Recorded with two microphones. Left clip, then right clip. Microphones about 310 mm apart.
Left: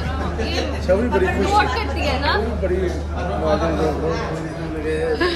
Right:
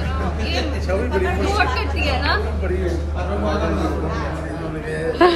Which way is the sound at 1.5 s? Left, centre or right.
Left.